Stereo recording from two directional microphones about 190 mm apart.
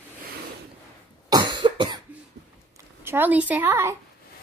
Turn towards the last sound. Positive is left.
turn(degrees=-15)  # may be behind; listen again after turning